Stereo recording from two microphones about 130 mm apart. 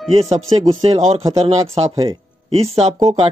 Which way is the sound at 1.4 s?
50° right (ahead or behind).